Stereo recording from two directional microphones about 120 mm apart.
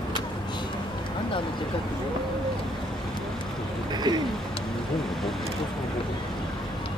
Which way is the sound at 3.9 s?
35° right (ahead or behind).